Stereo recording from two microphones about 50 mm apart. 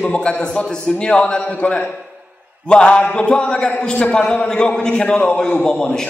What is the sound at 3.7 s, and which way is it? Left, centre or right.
A man's voice, left.